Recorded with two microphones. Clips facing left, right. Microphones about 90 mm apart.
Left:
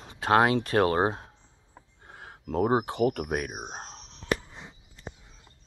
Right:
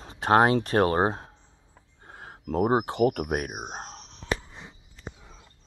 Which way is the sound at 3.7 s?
35° right (ahead or behind).